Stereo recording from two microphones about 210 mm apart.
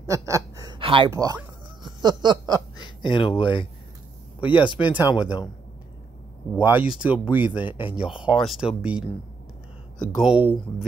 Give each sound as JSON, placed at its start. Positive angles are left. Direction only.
{"t": 0.0, "sound": "a sound", "side_deg": -15}
{"t": 2.8, "sound": "speech", "side_deg": 20}
{"t": 6.6, "sound": "speech", "side_deg": -5}
{"t": 10.1, "sound": "speech", "side_deg": -5}